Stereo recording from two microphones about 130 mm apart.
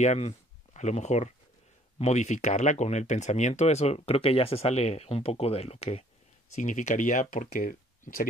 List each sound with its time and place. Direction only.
0.0 s speech: 60° left (ahead or behind)
6.5 s speech: 70° left (ahead or behind); by 8.3 s 90° left